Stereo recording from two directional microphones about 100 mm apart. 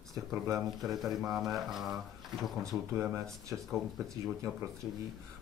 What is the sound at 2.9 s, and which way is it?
Speech, 25° right (ahead or behind).